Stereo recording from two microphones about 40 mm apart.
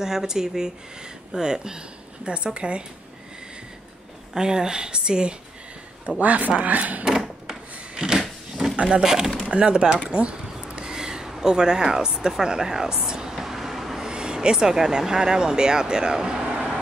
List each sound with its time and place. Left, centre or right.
0.0 s a woman's voice: centre
4.4 s a woman's voice: centre
6.0 s a man's voice: right
7.1 s drawer open or close: centre
8.7 s speech: right
9.0 s speech: centre
9.4 s a sound: right
11.4 s speech: centre
14.0 s speech: right